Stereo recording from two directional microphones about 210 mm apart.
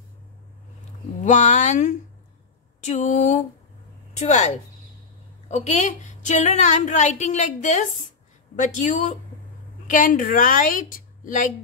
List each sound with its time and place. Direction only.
1.2 s a woman's voice: 35° left (ahead or behind)